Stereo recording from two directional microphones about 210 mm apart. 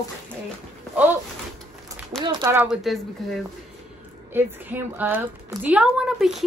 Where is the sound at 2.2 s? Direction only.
20° right (ahead or behind).